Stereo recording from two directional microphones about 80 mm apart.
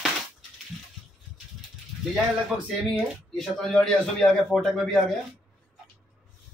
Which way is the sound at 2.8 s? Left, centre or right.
Centre.